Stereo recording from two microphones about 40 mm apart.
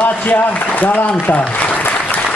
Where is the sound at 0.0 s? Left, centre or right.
Left.